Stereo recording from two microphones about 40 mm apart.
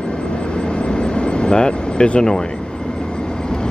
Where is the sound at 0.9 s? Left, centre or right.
Left.